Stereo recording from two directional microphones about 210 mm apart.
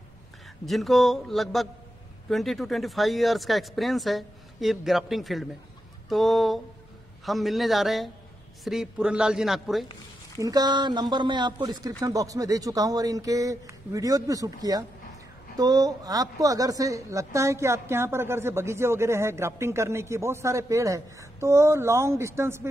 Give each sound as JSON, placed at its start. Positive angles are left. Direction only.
{"t": 0.7, "sound": "speech", "side_deg": 0}
{"t": 10.4, "sound": "a woman's voice", "side_deg": -20}